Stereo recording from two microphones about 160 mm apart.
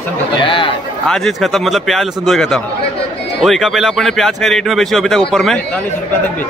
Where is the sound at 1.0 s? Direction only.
5° left (ahead or behind).